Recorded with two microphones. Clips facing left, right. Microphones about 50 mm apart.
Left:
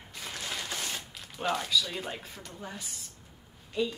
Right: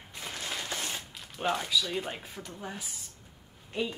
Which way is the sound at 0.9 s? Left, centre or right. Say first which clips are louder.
Even; centre.